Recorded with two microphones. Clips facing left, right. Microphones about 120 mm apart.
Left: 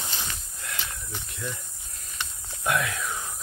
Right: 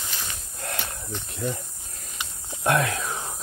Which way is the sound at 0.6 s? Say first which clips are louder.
Right 4 dB; 45° right (ahead or behind).